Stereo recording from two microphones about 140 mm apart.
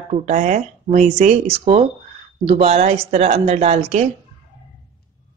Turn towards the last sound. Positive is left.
turn(degrees=-50)  # may be behind; listen again after turning